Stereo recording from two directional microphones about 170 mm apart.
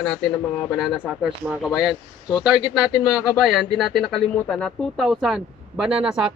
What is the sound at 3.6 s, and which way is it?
Speech, centre (ahead or behind).